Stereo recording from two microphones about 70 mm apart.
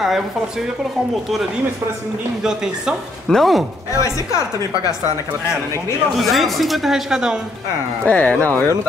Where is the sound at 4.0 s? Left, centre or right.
Left.